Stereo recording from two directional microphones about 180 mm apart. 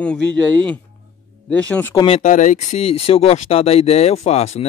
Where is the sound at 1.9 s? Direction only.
25° left (ahead or behind).